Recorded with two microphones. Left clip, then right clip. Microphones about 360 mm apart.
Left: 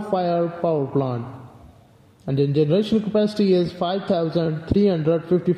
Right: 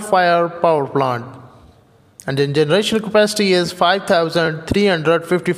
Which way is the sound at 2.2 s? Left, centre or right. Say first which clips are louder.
Right 4 dB; right.